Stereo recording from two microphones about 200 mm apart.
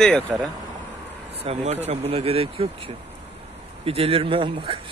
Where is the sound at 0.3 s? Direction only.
5° right (ahead or behind).